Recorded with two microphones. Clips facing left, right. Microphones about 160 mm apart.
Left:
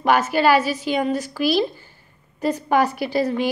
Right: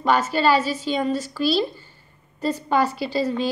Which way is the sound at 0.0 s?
10° left (ahead or behind).